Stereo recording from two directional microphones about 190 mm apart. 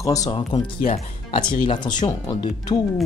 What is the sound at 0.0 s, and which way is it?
Speech, 20° left (ahead or behind).